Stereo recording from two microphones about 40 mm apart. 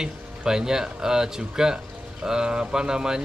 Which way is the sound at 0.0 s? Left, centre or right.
Centre.